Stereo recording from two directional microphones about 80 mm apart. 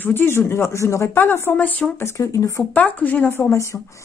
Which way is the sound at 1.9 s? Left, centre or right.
Left.